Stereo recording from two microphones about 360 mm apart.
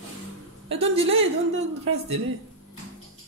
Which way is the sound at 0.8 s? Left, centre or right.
Centre.